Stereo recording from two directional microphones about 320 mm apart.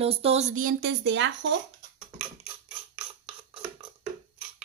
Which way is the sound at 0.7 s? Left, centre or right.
Right.